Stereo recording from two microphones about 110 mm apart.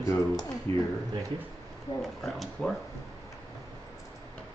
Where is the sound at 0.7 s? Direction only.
60° right (ahead or behind).